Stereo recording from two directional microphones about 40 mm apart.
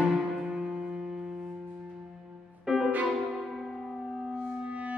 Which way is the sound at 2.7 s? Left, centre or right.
Centre.